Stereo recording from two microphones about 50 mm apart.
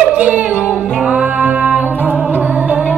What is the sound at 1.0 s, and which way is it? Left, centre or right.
Music, right.